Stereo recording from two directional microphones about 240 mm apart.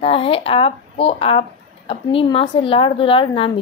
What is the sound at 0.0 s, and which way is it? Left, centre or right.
Speech, left.